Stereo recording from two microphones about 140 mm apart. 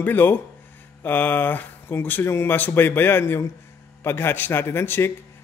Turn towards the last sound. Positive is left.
turn(degrees=15)  # may be behind; listen again after turning